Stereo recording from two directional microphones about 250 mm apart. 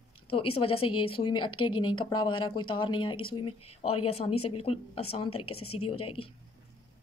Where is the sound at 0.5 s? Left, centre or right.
Left.